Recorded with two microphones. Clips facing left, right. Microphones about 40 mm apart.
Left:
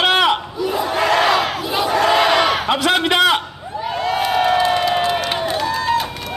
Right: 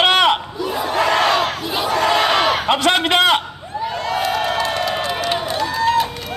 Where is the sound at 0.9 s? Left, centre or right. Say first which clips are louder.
Even; centre.